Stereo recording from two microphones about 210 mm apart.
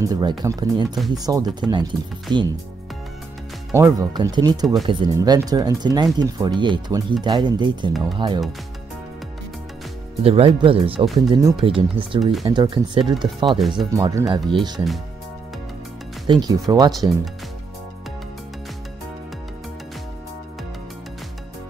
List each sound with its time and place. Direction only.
0.0 s speech: 20° right (ahead or behind)
3.7 s speech: 15° right (ahead or behind)
10.2 s speech: 25° right (ahead or behind)
12.2 s speech: centre (ahead or behind)
12.4 s speech: 25° right (ahead or behind)
16.3 s speech: 20° right (ahead or behind)